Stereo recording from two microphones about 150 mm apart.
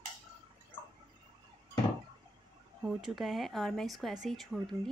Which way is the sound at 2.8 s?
5° right (ahead or behind).